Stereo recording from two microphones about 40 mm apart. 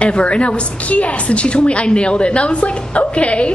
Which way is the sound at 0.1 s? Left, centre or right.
Left.